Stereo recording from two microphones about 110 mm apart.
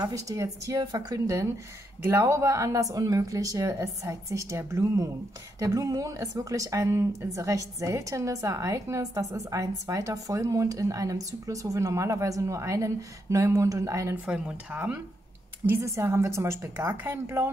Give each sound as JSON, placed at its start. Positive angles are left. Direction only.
{"t": 0.0, "sound": "a woman's voice", "side_deg": -30}
{"t": 14.2, "sound": "speech", "side_deg": -15}
{"t": 15.7, "sound": "a woman's voice", "side_deg": -25}